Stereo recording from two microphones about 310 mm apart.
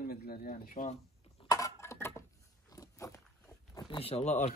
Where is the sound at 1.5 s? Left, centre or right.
Centre.